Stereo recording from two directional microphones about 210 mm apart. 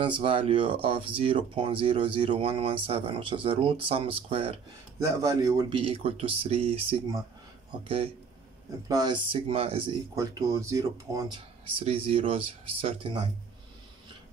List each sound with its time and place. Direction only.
0.0 s speech: 25° right (ahead or behind)
4.9 s speech: 15° right (ahead or behind)
8.8 s speech: 20° right (ahead or behind)
10.1 s speech: 15° right (ahead or behind)